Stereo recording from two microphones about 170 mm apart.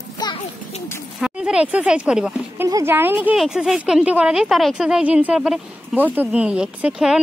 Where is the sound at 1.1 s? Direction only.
5° right (ahead or behind).